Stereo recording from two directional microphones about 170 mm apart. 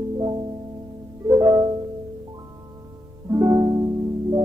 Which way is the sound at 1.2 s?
20° right (ahead or behind).